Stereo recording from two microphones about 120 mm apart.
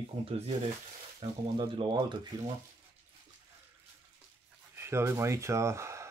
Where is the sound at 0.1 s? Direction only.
55° right (ahead or behind).